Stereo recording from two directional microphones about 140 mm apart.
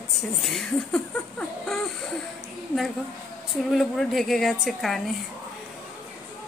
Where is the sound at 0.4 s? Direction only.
Centre (ahead or behind).